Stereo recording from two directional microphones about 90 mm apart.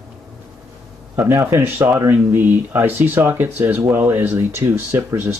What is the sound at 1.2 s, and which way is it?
Speech, 25° right (ahead or behind).